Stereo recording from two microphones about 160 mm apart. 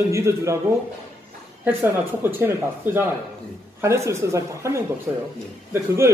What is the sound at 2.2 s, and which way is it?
A man's voice, 15° right (ahead or behind).